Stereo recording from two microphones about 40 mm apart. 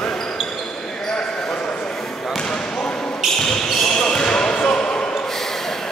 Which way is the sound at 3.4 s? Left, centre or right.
Centre.